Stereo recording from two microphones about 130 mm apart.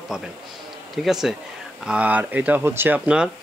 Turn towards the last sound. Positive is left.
turn(degrees=-10)  # may be behind; listen again after turning